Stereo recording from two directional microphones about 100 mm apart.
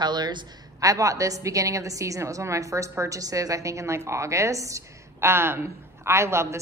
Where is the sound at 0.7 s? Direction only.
35° right (ahead or behind).